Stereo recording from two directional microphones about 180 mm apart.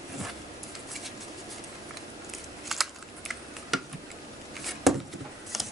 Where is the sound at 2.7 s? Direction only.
Centre (ahead or behind).